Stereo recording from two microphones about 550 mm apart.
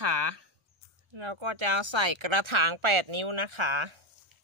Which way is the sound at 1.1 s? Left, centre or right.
Right.